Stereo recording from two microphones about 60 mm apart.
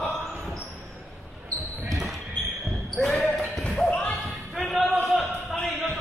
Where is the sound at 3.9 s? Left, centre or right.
Left.